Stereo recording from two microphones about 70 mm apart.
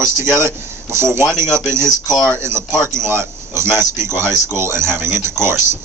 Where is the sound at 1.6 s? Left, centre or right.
Right.